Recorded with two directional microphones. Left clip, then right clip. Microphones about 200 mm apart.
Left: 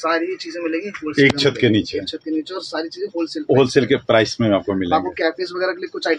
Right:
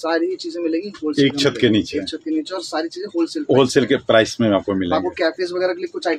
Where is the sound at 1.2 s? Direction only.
Centre (ahead or behind).